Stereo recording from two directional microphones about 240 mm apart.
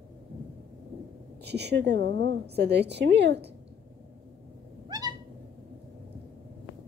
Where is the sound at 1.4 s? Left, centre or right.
Right.